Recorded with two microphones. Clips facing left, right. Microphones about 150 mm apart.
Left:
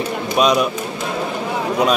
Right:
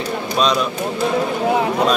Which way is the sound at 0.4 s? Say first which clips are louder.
Left 3 dB; 10° left (ahead or behind).